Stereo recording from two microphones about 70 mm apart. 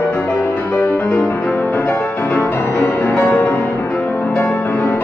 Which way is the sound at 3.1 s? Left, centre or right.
Left.